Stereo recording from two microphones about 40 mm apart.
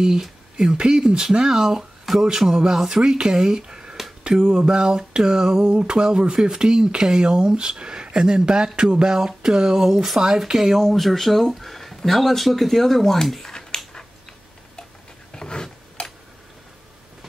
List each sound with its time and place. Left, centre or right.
0.0 s speech: centre
4.4 s speech: centre
4.6 s a sound: centre
8.9 s speech: centre
10.9 s speech: centre
15.3 s a sound: centre